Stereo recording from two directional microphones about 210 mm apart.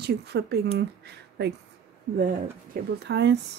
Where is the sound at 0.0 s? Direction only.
50° right (ahead or behind).